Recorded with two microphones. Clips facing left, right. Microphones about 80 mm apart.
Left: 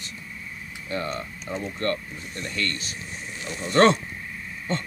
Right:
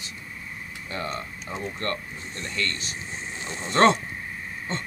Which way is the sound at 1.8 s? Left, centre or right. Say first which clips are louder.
Left 3 dB; right.